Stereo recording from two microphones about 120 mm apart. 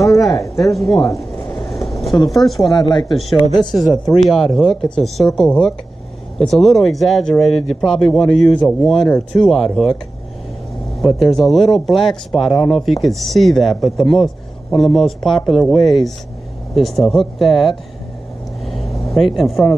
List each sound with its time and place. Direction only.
0.3 s speech: 30° left (ahead or behind)
0.7 s speech: centre (ahead or behind)
1.1 s a sound: 25° left (ahead or behind)
1.9 s a sound: centre (ahead or behind)
2.2 s speech: centre (ahead or behind)
2.7 s speech: 35° left (ahead or behind)
3.1 s speech: centre (ahead or behind)
11.0 s speech: centre (ahead or behind)
18.7 s vehicle: centre (ahead or behind)